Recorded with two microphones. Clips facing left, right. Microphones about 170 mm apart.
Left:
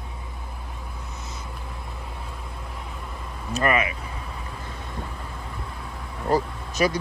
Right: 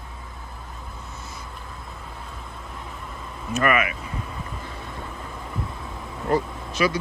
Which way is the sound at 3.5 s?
30° left (ahead or behind).